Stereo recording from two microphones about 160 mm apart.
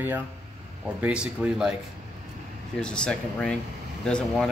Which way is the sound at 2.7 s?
5° left (ahead or behind).